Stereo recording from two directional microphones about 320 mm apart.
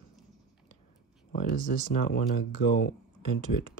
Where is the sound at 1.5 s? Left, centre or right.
Left.